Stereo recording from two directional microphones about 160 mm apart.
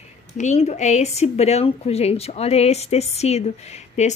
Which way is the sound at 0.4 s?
45° left (ahead or behind).